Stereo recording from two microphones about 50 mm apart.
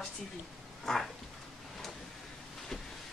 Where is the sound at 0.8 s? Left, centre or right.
Centre.